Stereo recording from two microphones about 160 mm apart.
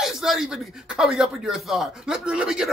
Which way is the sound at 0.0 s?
Centre (ahead or behind).